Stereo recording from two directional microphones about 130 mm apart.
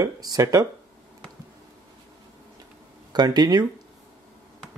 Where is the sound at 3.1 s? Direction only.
30° right (ahead or behind).